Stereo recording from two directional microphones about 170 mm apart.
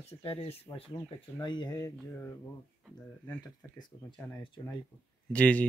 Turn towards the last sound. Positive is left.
turn(degrees=10)  # may be behind; listen again after turning